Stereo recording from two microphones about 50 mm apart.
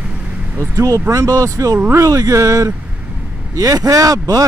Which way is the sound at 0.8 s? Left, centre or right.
Right.